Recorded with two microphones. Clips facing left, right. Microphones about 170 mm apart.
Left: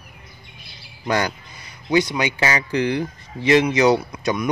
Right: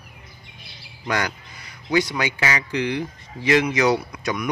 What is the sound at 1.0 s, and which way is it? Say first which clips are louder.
A man's voice: left 3 dB; 25° left (ahead or behind).